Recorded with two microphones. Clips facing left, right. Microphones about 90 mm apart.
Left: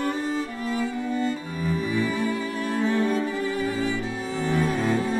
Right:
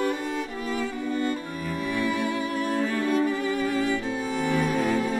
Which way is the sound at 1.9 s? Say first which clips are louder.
Right 1 dB; 65° right (ahead or behind).